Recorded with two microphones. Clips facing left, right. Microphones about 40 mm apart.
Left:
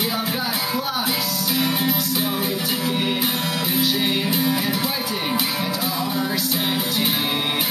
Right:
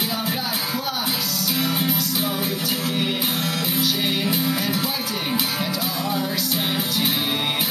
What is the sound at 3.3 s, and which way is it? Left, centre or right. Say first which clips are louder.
Music: left 1 dB; centre.